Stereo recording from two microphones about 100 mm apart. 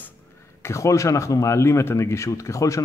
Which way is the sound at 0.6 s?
30° left (ahead or behind).